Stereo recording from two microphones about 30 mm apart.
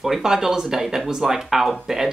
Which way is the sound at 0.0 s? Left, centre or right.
Centre.